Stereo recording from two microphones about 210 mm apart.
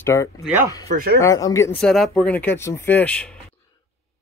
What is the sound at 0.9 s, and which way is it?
Speech, 45° right (ahead or behind).